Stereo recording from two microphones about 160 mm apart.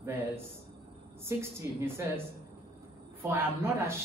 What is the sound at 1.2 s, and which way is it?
A man's voice, 15° right (ahead or behind).